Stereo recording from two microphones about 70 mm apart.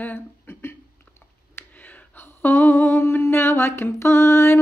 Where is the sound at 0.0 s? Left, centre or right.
Left.